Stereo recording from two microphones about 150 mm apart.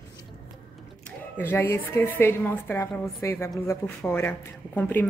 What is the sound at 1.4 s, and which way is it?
A woman's voice, 15° left (ahead or behind).